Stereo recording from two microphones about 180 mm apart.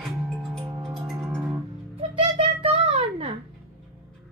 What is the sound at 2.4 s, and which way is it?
Child singing, 35° right (ahead or behind).